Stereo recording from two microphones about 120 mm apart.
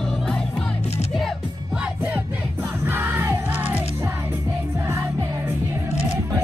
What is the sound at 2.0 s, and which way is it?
Music, 15° right (ahead or behind).